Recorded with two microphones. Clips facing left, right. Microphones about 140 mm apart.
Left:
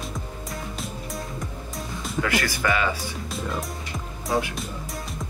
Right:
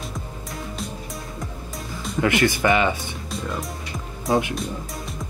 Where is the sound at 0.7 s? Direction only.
Centre (ahead or behind).